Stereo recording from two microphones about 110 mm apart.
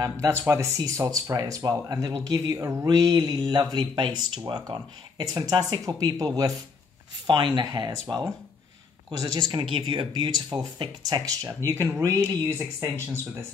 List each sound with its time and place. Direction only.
0.0 s speech: 30° right (ahead or behind)
11.4 s speech: 25° right (ahead or behind)